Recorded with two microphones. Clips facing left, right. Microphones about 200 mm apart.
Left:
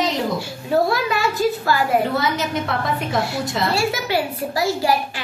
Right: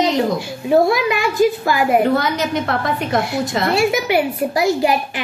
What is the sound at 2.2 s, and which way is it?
A woman's voice, centre (ahead or behind).